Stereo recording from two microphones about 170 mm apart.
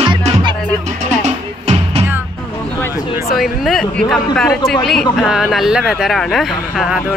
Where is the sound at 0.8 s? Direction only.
45° right (ahead or behind).